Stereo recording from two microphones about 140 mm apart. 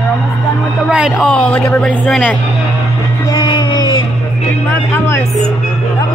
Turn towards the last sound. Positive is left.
turn(degrees=20)  # may be behind; listen again after turning